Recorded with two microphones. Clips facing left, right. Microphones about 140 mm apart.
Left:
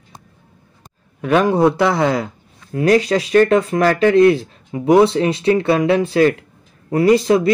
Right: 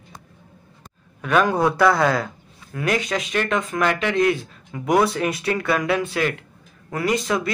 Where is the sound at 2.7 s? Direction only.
35° left (ahead or behind).